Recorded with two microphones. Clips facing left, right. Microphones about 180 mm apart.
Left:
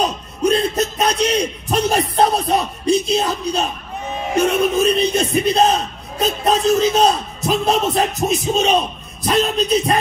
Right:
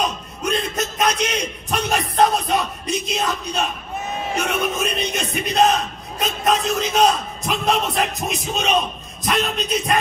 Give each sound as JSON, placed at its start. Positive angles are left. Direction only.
{"t": 0.0, "sound": "a man's voice", "side_deg": 35}